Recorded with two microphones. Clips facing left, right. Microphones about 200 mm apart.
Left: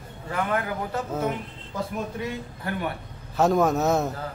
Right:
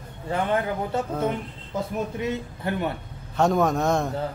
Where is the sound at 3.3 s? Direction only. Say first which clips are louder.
Even; centre (ahead or behind).